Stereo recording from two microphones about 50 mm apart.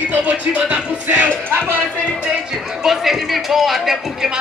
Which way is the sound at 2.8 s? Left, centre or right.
Centre.